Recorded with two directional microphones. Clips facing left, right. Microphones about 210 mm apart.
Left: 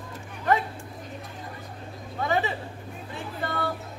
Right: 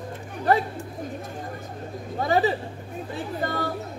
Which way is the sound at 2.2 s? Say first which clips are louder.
Right 5 dB; 35° right (ahead or behind).